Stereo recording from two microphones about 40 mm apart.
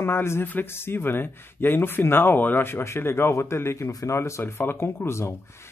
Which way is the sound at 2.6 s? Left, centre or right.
Left.